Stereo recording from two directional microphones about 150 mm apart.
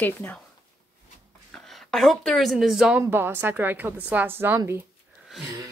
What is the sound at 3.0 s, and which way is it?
A woman's voice, 15° right (ahead or behind).